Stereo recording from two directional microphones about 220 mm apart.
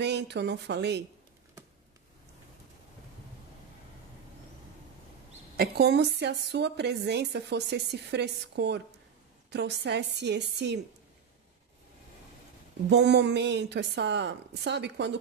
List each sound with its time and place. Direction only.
0.0 s a woman's voice: 50° right (ahead or behind)
5.6 s a woman's voice: 50° right (ahead or behind)
12.9 s a woman's voice: 50° right (ahead or behind)